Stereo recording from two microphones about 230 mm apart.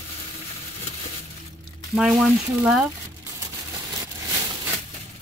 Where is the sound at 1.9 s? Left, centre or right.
Centre.